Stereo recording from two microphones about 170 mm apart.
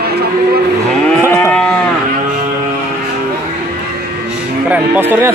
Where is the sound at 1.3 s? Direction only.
15° left (ahead or behind).